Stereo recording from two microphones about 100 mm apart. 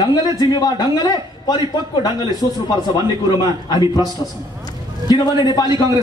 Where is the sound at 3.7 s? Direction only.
40° left (ahead or behind).